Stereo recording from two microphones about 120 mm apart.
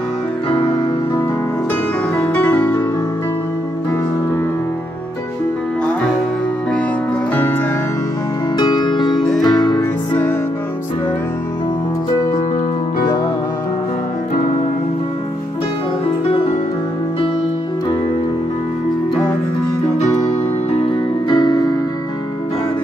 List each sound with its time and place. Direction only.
0.5 s music: 45° left (ahead or behind)
2.2 s music: 10° left (ahead or behind)
8.5 s music: 40° left (ahead or behind)
20.0 s music: 70° left (ahead or behind)
20.8 s music: 40° left (ahead or behind)